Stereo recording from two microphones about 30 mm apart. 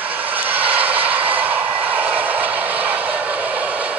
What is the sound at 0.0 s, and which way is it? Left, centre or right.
Vehicle, right.